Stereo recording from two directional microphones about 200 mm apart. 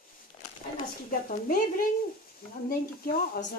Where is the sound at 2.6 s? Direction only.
45° left (ahead or behind).